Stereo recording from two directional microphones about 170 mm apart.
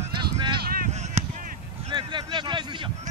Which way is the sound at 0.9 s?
40° right (ahead or behind).